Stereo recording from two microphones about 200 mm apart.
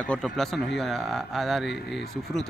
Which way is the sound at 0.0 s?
5° left (ahead or behind).